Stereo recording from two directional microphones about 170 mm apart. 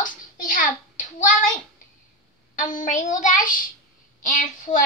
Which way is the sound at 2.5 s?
50° left (ahead or behind).